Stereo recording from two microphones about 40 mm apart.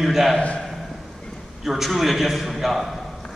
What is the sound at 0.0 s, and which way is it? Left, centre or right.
Speech, centre.